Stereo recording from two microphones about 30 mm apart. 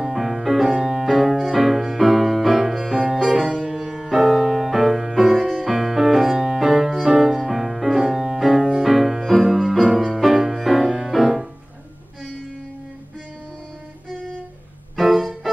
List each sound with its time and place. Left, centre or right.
0.0 s music: centre
0.7 s piano: centre
1.1 s music: centre
8.5 s music: right
8.8 s music: centre
15.0 s music: centre